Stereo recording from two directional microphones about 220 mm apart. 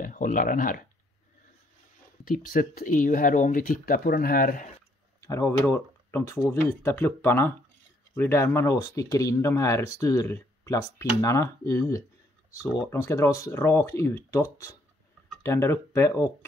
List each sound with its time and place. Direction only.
0.0 s speech: 40° left (ahead or behind)
2.2 s speech: 40° left (ahead or behind)
5.2 s speech: 15° left (ahead or behind)